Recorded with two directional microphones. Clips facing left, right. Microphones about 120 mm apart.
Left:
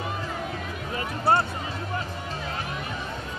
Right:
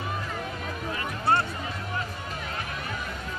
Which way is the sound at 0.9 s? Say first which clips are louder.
Left 3 dB; 30° left (ahead or behind).